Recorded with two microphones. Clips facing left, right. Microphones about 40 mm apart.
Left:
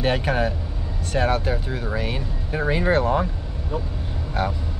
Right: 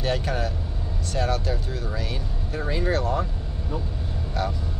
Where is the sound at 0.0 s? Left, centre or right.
Left.